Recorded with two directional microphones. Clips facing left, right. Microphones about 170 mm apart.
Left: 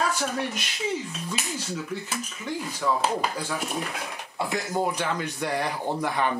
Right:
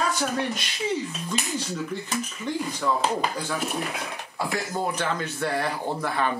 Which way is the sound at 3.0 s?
5° left (ahead or behind).